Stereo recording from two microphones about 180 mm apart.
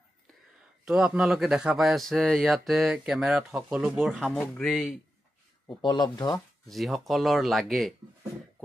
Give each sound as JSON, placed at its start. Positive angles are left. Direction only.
{"t": 0.8, "sound": "speech", "side_deg": -5}
{"t": 5.7, "sound": "speech", "side_deg": 25}
{"t": 6.7, "sound": "speech", "side_deg": 0}